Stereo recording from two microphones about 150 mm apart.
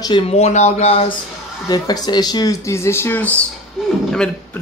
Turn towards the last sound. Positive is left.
turn(degrees=5)  # may be behind; listen again after turning